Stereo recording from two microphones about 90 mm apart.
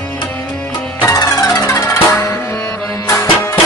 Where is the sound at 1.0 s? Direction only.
35° left (ahead or behind).